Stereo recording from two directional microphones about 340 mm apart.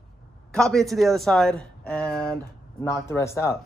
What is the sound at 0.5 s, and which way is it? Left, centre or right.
Speech, centre.